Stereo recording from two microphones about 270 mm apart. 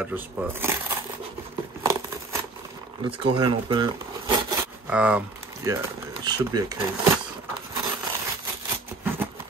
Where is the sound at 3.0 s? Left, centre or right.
Centre.